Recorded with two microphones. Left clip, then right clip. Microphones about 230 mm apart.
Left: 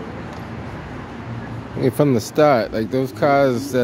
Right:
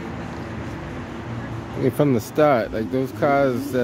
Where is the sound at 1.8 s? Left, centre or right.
Centre.